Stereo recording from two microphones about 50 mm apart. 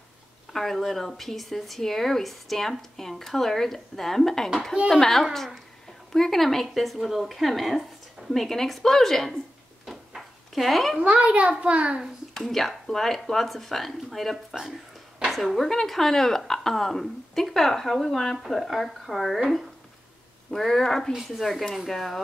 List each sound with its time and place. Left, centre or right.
0.5 s a woman's voice: centre
9.8 s drawer open or close: centre
11.0 s a child's voice: right
12.4 s a woman's voice: centre